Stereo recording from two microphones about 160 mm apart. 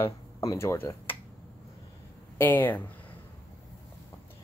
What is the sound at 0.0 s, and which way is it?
Speech, 20° left (ahead or behind).